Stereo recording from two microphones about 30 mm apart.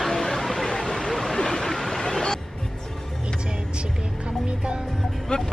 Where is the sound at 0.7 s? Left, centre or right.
Centre.